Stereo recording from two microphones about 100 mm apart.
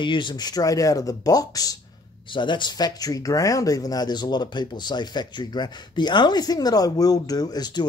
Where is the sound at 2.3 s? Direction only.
50° left (ahead or behind).